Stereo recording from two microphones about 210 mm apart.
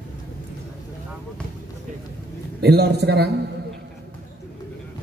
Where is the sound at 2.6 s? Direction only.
50° right (ahead or behind).